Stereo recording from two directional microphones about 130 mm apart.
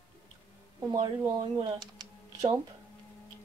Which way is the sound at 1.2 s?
30° right (ahead or behind).